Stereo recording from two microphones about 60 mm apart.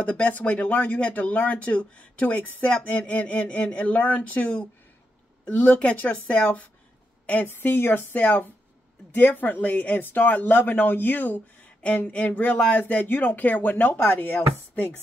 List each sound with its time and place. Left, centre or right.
0.0 s speech: left
7.4 s speech: left